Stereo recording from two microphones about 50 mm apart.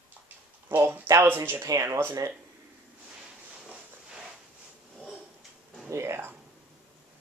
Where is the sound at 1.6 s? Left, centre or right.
Right.